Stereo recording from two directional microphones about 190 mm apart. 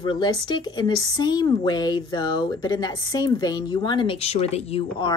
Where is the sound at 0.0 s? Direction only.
25° left (ahead or behind).